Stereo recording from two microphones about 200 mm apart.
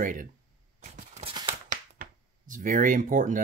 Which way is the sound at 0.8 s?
35° right (ahead or behind).